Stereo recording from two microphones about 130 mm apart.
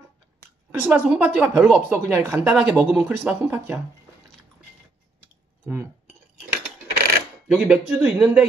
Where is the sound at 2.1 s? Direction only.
20° right (ahead or behind).